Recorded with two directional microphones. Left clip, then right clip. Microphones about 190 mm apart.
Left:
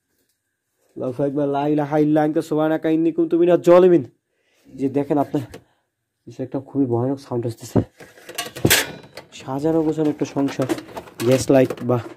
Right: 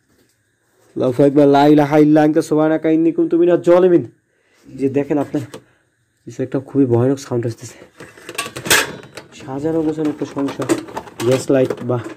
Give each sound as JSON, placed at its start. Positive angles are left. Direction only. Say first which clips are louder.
{"t": 0.9, "sound": "a man's voice", "louder": "right 10 dB", "side_deg": -15}
{"t": 1.8, "sound": "a man's voice", "louder": "right 6 dB", "side_deg": 0}
{"t": 6.2, "sound": "speech", "louder": "right 6 dB", "side_deg": 0}
{"t": 7.4, "sound": "speech", "louder": "left 4 dB", "side_deg": 25}
{"t": 9.3, "sound": "speech", "louder": "even", "side_deg": 30}
{"t": 11.3, "sound": "speech", "louder": "even", "side_deg": 35}